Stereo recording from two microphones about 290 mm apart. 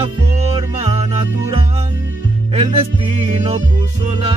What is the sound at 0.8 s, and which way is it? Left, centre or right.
Music, right.